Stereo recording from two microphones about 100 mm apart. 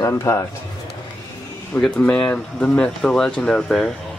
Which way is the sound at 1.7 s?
10° left (ahead or behind).